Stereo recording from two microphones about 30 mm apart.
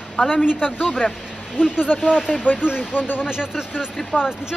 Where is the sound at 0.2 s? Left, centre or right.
Centre.